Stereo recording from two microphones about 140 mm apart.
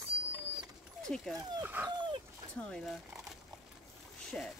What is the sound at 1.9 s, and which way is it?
Dog, 35° right (ahead or behind).